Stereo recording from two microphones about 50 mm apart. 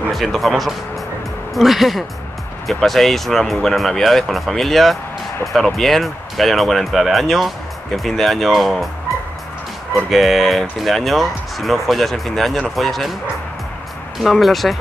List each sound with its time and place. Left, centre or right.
0.1 s speech: centre
10.0 s speech: centre
14.3 s speech: centre